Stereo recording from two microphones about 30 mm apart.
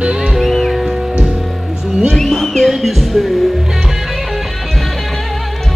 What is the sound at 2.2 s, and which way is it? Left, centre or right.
Music, centre.